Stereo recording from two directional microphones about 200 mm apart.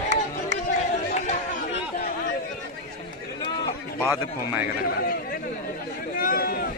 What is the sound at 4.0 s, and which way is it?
Speech, 10° right (ahead or behind).